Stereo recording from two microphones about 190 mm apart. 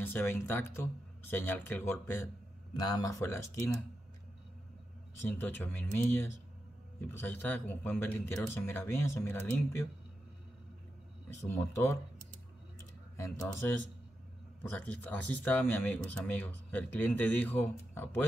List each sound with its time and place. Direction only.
0.0 s speech: 10° left (ahead or behind)
5.2 s speech: 10° left (ahead or behind)
7.0 s speech: 10° left (ahead or behind)
11.4 s speech: 15° left (ahead or behind)
13.6 s speech: 10° left (ahead or behind)